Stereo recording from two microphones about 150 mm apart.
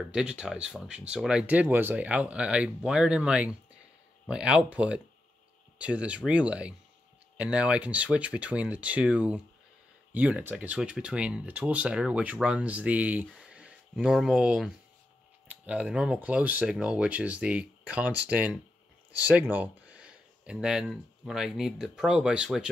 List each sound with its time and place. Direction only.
0.1 s speech: 5° right (ahead or behind)